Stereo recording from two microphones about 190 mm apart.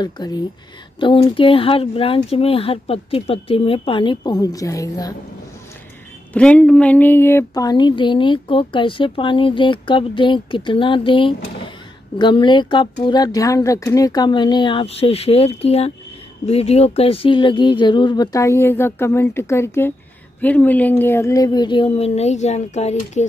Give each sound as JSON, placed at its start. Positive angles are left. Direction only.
{"t": 0.0, "sound": "speech", "side_deg": 20}
{"t": 6.3, "sound": "speech", "side_deg": 5}